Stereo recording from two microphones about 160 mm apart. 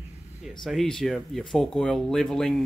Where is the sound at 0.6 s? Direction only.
Centre (ahead or behind).